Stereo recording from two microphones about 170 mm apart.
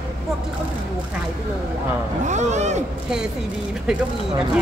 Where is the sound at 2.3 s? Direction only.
45° right (ahead or behind).